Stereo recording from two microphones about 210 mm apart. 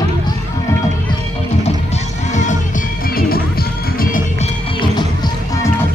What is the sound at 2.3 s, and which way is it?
Music, 35° left (ahead or behind).